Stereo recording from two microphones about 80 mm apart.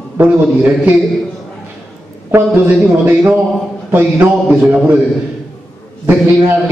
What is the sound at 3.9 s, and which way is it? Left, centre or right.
Speech, right.